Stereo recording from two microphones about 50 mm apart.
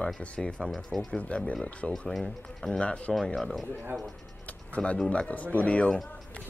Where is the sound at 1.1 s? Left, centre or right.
Left.